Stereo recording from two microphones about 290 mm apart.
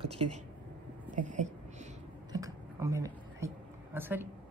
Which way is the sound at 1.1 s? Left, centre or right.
Right.